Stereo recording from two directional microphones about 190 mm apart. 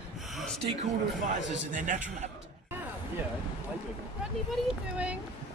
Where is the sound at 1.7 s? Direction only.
40° right (ahead or behind).